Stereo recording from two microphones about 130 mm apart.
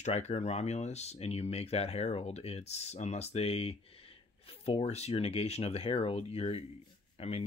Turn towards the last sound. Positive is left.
turn(degrees=55)  # may be behind; listen again after turning